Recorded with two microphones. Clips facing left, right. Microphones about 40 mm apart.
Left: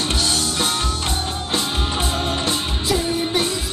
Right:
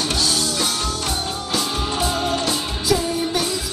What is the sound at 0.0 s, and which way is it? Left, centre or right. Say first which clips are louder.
Music: even; left.